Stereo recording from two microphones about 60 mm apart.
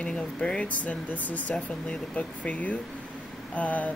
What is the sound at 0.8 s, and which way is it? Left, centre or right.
Speech, left.